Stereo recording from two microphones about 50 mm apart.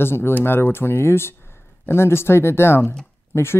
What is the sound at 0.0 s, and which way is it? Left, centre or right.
Speech, left.